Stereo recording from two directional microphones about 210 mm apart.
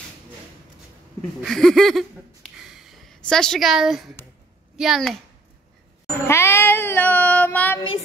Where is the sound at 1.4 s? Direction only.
Centre (ahead or behind).